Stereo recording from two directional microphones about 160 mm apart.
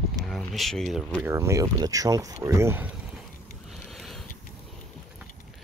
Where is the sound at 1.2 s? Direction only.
15° right (ahead or behind).